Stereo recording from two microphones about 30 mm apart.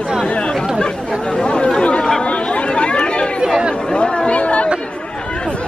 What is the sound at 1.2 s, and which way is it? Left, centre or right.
Chatter, left.